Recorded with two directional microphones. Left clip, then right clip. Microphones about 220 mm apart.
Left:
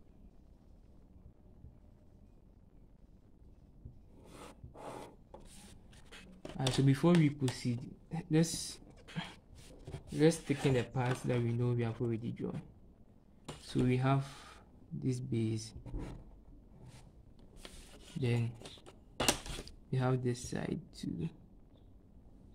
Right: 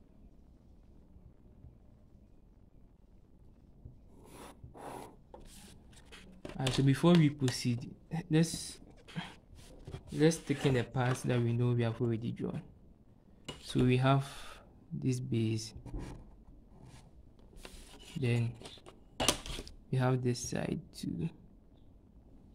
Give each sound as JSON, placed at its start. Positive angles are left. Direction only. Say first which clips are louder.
{"t": 4.2, "sound": "a sound", "louder": "right 1 dB", "side_deg": -15}
{"t": 6.4, "sound": "speech", "louder": "right 1 dB", "side_deg": -10}
{"t": 8.4, "sound": "a sound", "louder": "even", "side_deg": 0}
{"t": 10.1, "sound": "speech", "louder": "even", "side_deg": -10}
{"t": 13.7, "sound": "speech", "louder": "right 3 dB", "side_deg": -20}
{"t": 18.2, "sound": "speech", "louder": "right 1 dB", "side_deg": -10}